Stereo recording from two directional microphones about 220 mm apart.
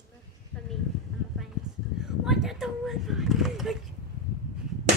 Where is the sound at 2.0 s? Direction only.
Centre (ahead or behind).